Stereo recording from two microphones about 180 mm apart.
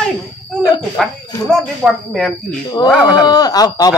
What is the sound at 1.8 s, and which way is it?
Speech, centre (ahead or behind).